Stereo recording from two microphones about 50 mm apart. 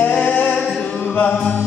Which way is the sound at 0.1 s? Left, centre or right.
Left.